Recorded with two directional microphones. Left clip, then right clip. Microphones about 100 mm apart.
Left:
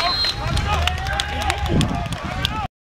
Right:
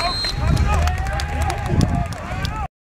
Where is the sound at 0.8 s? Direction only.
55° left (ahead or behind).